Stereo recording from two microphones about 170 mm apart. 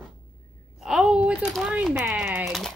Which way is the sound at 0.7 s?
Centre (ahead or behind).